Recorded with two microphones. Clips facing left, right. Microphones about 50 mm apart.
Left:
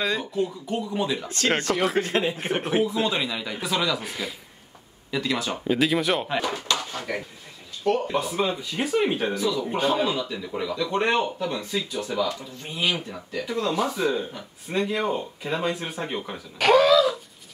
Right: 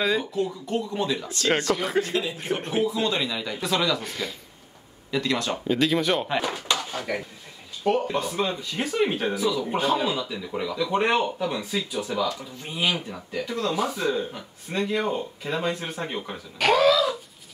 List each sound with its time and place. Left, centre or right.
0.0 s speech: centre
2.0 s speech: left
2.8 s speech: centre